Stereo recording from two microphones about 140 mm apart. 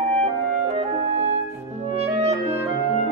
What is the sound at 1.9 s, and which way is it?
Clarinet, 50° right (ahead or behind).